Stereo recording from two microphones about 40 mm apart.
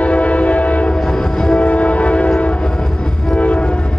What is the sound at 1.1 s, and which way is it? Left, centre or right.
Train, centre.